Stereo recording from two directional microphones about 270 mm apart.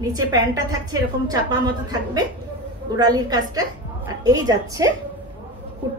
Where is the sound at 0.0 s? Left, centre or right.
Centre.